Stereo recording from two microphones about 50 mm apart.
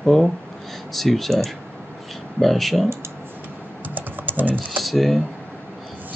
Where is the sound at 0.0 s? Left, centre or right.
Centre.